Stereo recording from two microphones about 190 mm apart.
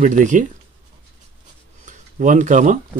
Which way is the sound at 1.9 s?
40° right (ahead or behind).